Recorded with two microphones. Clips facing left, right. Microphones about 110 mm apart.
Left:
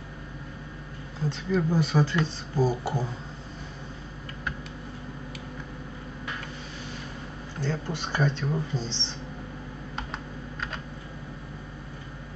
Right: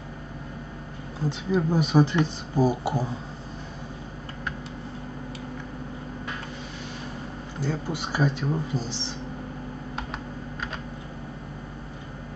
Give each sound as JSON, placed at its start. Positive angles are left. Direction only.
{"t": 1.5, "sound": "speech", "side_deg": -15}
{"t": 7.6, "sound": "speech", "side_deg": -10}